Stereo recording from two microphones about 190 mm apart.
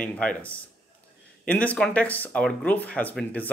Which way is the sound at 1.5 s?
10° left (ahead or behind).